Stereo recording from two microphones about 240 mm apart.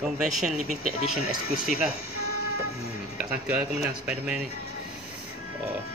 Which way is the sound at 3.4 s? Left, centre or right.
Centre.